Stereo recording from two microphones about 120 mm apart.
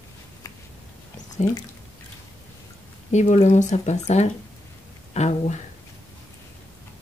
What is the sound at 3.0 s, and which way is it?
Speech, 70° left (ahead or behind).